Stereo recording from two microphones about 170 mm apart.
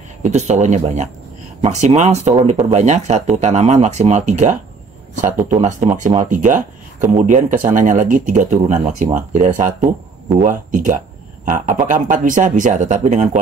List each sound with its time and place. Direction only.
0.2 s speech: 40° right (ahead or behind)